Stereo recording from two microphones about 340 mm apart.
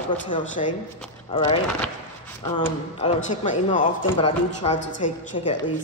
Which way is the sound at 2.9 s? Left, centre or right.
Centre.